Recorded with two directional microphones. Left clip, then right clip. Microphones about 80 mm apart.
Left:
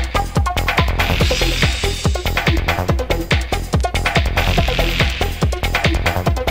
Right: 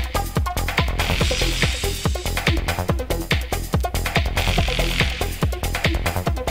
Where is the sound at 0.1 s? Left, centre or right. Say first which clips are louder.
Left 6 dB; centre.